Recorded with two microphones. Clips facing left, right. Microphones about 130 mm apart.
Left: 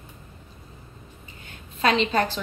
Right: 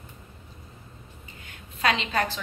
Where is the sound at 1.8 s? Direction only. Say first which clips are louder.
Left 4 dB; 30° left (ahead or behind).